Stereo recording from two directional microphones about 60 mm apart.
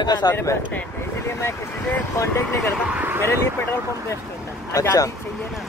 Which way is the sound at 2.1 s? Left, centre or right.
Left.